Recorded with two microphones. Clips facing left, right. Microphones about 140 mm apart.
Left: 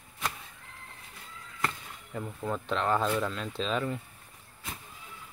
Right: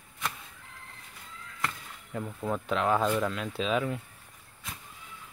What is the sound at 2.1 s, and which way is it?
Speech, 5° right (ahead or behind).